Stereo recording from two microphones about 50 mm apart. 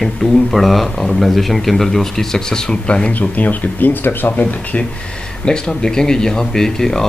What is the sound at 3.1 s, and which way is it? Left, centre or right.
Speech, left.